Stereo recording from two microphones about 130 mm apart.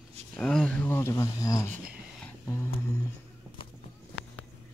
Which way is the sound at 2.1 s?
10° left (ahead or behind).